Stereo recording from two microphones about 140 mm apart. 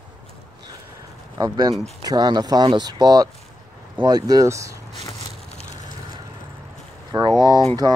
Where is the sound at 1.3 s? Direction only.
25° right (ahead or behind).